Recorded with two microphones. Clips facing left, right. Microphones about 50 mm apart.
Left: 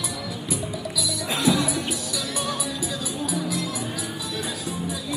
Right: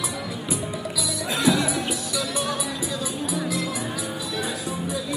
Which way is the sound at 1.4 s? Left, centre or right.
Right.